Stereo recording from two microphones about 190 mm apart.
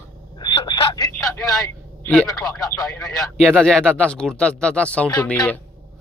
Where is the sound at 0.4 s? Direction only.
25° left (ahead or behind).